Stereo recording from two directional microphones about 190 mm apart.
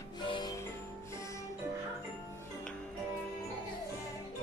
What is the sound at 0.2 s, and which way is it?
Music, 25° left (ahead or behind).